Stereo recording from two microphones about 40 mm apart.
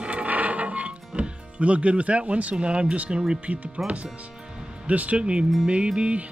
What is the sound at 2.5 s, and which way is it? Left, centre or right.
Speech, right.